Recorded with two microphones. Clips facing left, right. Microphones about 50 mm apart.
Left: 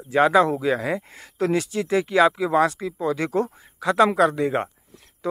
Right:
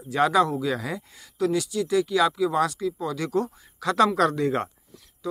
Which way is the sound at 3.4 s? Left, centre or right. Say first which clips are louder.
Left 3 dB; centre.